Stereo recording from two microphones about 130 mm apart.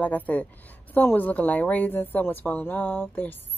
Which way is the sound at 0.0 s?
10° left (ahead or behind).